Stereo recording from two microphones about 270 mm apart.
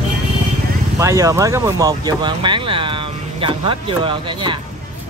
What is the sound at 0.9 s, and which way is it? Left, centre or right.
Speech, centre.